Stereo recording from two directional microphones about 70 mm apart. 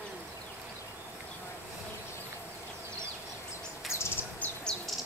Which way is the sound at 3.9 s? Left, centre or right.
Left.